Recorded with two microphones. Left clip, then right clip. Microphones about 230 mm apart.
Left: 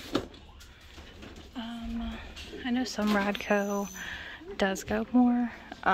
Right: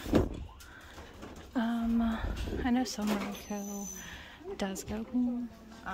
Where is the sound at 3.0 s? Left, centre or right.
Centre.